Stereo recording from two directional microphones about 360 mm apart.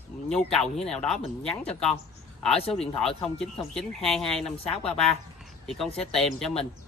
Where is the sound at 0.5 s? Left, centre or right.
Centre.